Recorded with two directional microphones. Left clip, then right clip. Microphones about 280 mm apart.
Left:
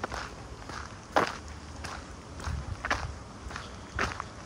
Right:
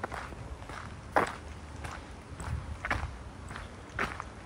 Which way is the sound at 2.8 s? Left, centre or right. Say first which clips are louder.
Left 3 dB; centre.